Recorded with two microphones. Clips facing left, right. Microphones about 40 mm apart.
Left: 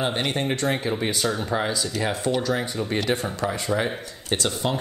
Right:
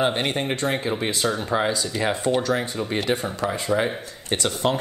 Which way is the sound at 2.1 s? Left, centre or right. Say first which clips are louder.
Right 2 dB; right.